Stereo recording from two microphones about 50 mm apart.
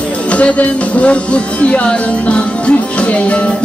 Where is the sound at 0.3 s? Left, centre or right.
Left.